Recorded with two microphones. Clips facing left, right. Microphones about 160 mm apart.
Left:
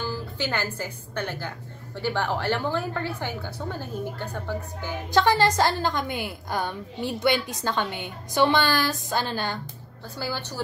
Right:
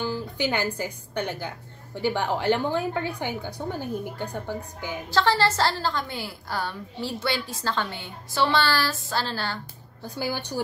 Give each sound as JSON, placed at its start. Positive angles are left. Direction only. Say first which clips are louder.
{"t": 0.0, "sound": "a woman's voice", "louder": "right 3 dB", "side_deg": -15}
{"t": 5.1, "sound": "a woman's voice", "louder": "left 2 dB", "side_deg": 15}
{"t": 10.0, "sound": "a woman's voice", "louder": "right 2 dB", "side_deg": -15}